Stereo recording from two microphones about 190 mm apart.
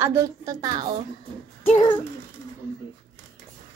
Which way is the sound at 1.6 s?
30° left (ahead or behind).